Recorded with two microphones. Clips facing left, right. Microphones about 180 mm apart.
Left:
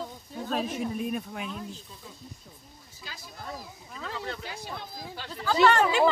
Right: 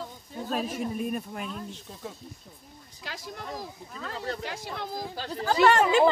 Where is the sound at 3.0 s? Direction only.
85° right.